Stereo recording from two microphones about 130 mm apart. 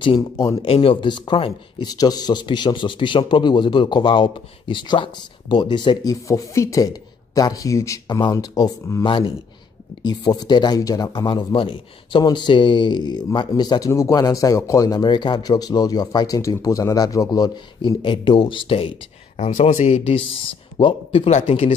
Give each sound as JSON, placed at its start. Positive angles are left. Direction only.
{"t": 0.0, "sound": "a man's voice", "side_deg": 40}
{"t": 6.2, "sound": "speech", "side_deg": 25}
{"t": 9.0, "sound": "a man's voice", "side_deg": 40}